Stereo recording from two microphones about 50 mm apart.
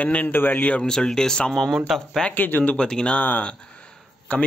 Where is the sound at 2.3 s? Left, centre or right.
Left.